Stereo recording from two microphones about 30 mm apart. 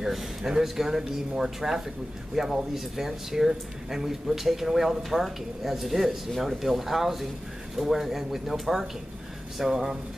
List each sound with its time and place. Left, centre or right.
0.5 s speech: centre